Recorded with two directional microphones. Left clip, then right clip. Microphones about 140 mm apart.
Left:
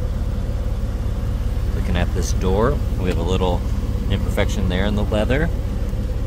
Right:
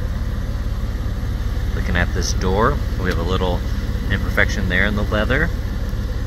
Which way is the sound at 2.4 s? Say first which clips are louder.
Right 1 dB; 15° left (ahead or behind).